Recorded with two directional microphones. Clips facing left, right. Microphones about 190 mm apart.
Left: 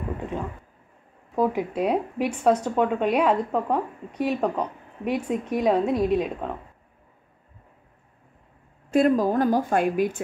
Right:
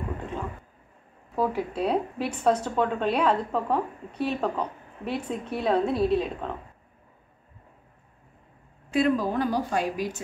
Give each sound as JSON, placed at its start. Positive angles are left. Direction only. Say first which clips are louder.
{"t": 1.3, "sound": "speech", "louder": "left 3 dB", "side_deg": 15}
{"t": 8.9, "sound": "a woman's voice", "louder": "left 4 dB", "side_deg": 45}